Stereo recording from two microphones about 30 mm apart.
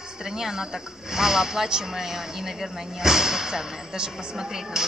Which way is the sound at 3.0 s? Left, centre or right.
Centre.